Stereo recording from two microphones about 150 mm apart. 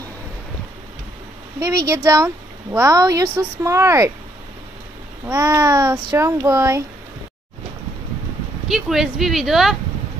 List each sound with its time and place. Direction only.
1.6 s speech: 20° right (ahead or behind)
5.2 s speech: 20° right (ahead or behind)
8.6 s speech: centre (ahead or behind)